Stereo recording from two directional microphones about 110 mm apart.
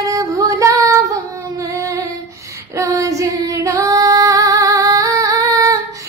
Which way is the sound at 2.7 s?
30° right (ahead or behind).